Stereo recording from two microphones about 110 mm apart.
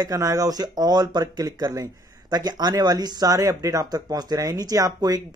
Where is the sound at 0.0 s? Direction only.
30° right (ahead or behind).